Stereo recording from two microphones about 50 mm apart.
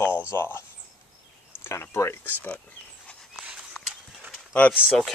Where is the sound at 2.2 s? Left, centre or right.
Left.